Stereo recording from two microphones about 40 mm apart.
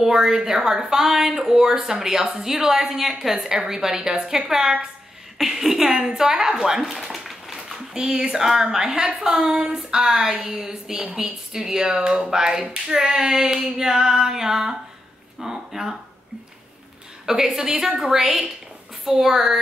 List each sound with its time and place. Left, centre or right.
0.0 s a woman's voice: centre
7.1 s a sound: centre
7.9 s a woman's voice: centre
17.6 s a woman's voice: centre